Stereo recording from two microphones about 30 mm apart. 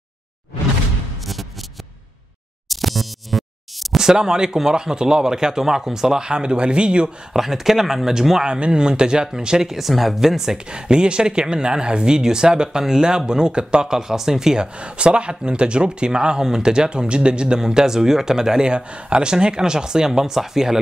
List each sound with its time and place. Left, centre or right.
2.7 s music: centre
4.0 s speech: right
7.3 s speech: centre
8.5 s speech: right
9.7 s speech: centre
10.2 s speech: centre
10.7 s speech: right
14.6 s speech: right
16.4 s speech: centre
18.7 s speech: right
20.1 s speech: centre